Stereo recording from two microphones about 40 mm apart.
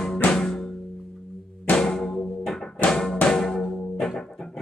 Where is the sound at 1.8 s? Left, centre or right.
Centre.